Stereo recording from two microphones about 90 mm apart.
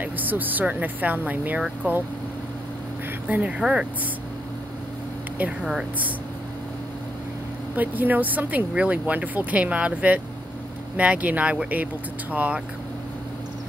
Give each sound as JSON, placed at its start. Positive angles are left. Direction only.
{"t": 0.0, "sound": "speech", "side_deg": -20}
{"t": 3.3, "sound": "speech", "side_deg": -15}
{"t": 5.4, "sound": "speech", "side_deg": -10}
{"t": 7.7, "sound": "speech", "side_deg": -20}